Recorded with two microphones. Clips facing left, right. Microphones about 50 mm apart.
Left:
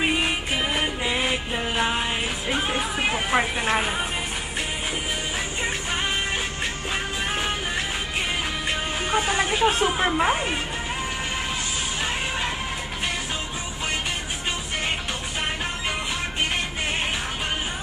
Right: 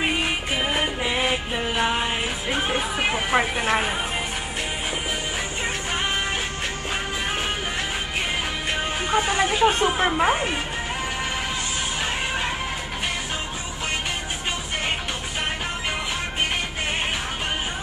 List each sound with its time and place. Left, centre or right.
0.0 s music: centre
9.2 s speech: centre
9.5 s speech: centre